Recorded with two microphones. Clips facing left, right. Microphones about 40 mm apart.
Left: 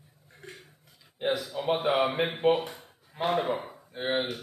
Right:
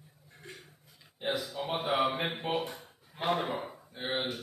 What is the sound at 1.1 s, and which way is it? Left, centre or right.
Speech, left.